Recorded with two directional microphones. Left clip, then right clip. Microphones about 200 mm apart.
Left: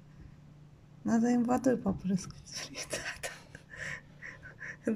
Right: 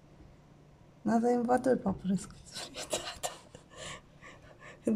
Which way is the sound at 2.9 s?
10° right (ahead or behind).